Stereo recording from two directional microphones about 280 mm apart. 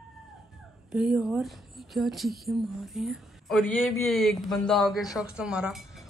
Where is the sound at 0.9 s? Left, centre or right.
Centre.